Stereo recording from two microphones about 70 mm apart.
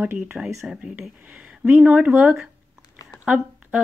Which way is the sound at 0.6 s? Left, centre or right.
Centre.